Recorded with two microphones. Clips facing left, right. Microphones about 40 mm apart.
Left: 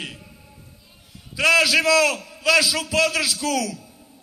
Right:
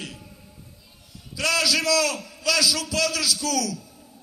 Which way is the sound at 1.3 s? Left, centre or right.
Left.